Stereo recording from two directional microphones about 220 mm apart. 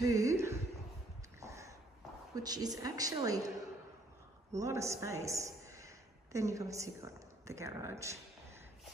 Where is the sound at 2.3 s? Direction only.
15° right (ahead or behind).